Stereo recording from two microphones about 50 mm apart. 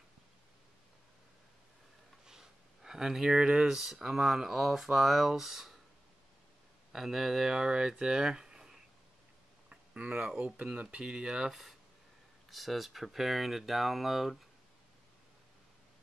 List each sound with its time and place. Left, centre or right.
2.2 s speech: centre
6.9 s speech: centre
9.7 s a sound: right
10.7 s speech: right; by 14.4 s centre